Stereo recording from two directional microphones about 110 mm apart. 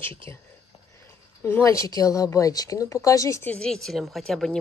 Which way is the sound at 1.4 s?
25° left (ahead or behind).